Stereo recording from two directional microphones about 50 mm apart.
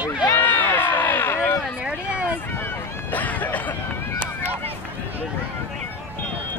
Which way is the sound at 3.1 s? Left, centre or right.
Left.